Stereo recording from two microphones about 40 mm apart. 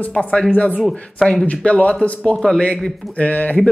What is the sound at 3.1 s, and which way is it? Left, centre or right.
Speech, left.